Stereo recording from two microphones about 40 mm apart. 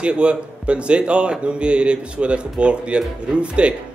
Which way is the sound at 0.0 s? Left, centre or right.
Right.